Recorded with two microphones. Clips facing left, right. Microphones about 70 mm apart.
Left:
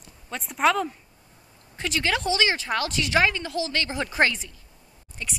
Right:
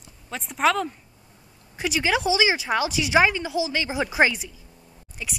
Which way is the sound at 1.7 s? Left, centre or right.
Centre.